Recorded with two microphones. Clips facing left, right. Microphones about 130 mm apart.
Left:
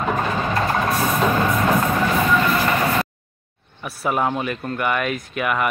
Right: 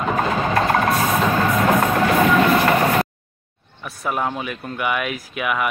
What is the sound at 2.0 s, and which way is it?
Train, 55° right (ahead or behind).